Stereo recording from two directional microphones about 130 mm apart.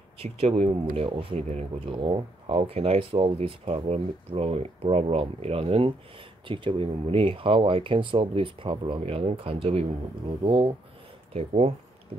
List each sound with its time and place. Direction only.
0.2 s speech: 45° right (ahead or behind)
1.9 s speech: 40° right (ahead or behind)